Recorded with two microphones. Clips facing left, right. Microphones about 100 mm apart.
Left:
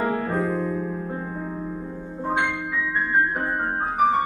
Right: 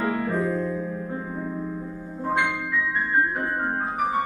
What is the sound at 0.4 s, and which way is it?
Music, 10° left (ahead or behind).